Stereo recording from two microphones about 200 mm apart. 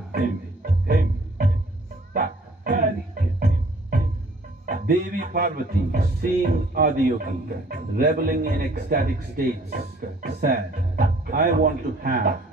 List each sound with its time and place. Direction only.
0.1 s music: 50° right (ahead or behind)
2.1 s music: 45° right (ahead or behind)
4.6 s speech: 45° right (ahead or behind)